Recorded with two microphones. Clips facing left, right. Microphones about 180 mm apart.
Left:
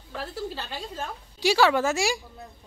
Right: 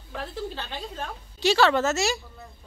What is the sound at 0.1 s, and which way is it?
A woman's voice, 5° left (ahead or behind).